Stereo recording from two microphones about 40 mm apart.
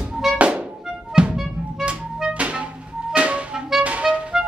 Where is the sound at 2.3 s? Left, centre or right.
Right.